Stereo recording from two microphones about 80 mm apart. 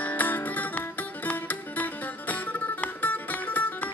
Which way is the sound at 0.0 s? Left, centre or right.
Left.